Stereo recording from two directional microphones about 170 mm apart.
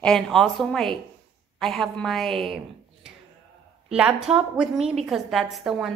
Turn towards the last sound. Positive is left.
turn(degrees=0)  # may be behind; listen again after turning